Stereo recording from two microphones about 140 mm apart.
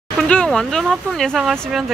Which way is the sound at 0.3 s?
5° left (ahead or behind).